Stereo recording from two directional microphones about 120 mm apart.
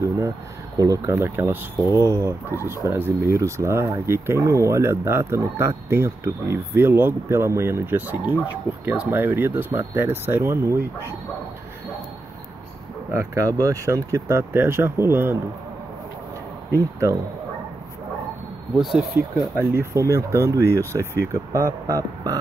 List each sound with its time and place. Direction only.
0.7 s speech: 25° right (ahead or behind)
13.1 s speech: 25° right (ahead or behind)
18.8 s speech: centre (ahead or behind)
19.1 s speech: 20° right (ahead or behind)